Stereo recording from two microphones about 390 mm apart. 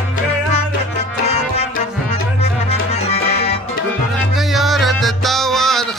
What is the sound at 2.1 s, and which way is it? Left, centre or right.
Music, centre.